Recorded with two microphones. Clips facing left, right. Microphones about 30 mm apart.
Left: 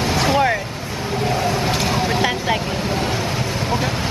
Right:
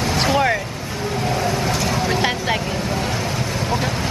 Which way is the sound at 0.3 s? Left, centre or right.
Centre.